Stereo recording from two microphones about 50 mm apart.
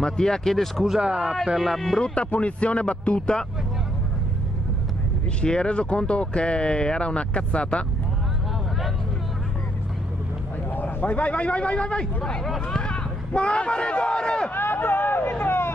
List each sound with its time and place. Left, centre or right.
0.0 s speech: centre
1.0 s speech: centre
1.3 s speech: centre
2.0 s speech: left
5.4 s speech: left
10.7 s a man's voice: left; by 14.5 s centre
14.5 s hubbub: left